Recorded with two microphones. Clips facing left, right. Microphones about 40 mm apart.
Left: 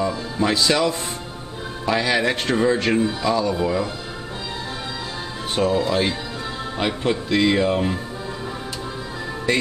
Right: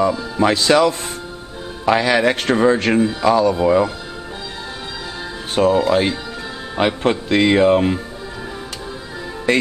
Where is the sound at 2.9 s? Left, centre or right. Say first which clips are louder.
Right 4 dB; centre.